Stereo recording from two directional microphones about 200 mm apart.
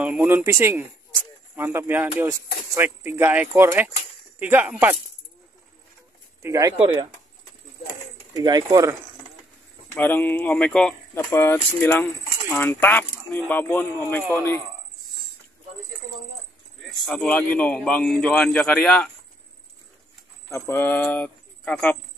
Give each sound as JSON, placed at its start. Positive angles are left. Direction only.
{"t": 0.0, "sound": "speech", "side_deg": -5}
{"t": 6.4, "sound": "speech", "side_deg": -15}
{"t": 8.3, "sound": "speech", "side_deg": -20}
{"t": 9.9, "sound": "speech", "side_deg": 10}
{"t": 16.8, "sound": "a man's voice", "side_deg": 0}
{"t": 20.5, "sound": "speech", "side_deg": 10}